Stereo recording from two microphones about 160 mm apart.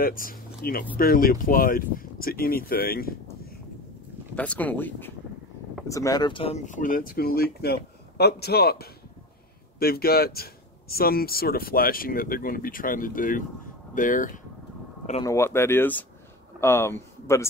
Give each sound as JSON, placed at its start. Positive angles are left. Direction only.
{"t": 0.0, "sound": "speech", "side_deg": 60}
{"t": 4.4, "sound": "speech", "side_deg": 10}
{"t": 6.6, "sound": "speech", "side_deg": 55}
{"t": 15.2, "sound": "speech", "side_deg": 15}